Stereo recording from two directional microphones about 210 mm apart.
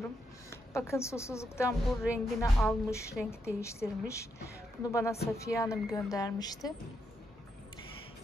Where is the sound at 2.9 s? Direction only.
15° left (ahead or behind).